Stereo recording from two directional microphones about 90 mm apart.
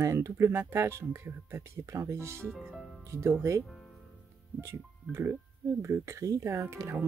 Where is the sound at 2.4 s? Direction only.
5° left (ahead or behind).